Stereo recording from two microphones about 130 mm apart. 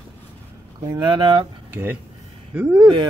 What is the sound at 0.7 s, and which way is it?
Speech, 35° right (ahead or behind).